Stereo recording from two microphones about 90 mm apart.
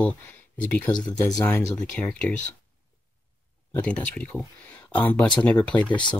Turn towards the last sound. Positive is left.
turn(degrees=15)  # may be behind; listen again after turning